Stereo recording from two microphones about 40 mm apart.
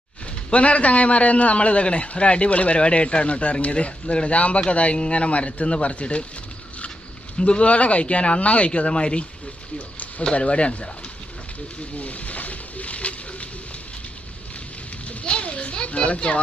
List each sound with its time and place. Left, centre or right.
0.5 s a man's voice: left
7.3 s a man's voice: left
10.2 s speech: left
12.0 s a sound: left
15.0 s children playing: left